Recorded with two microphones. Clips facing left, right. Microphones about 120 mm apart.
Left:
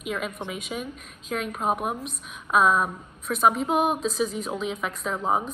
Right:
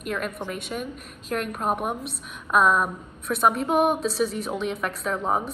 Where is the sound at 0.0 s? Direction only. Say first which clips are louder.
Right 1 dB; centre (ahead or behind).